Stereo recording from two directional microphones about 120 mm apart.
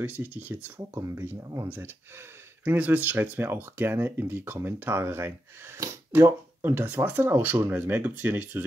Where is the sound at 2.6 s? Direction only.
15° right (ahead or behind).